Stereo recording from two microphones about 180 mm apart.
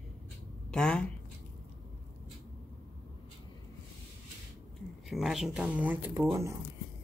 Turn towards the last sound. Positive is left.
turn(degrees=-15)  # may be behind; listen again after turning